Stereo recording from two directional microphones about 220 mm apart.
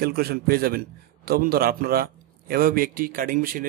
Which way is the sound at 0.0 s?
45° right (ahead or behind).